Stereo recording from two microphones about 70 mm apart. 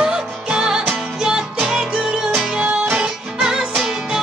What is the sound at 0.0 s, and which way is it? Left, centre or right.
Music, centre.